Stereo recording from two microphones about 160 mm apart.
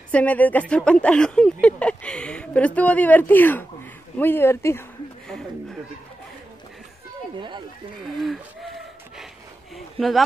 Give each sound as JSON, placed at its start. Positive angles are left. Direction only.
{"t": 0.1, "sound": "speech", "side_deg": 10}
{"t": 7.3, "sound": "speech", "side_deg": -30}
{"t": 8.2, "sound": "a sound", "side_deg": 0}